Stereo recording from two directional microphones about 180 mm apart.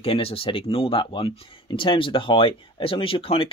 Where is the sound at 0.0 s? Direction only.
30° left (ahead or behind).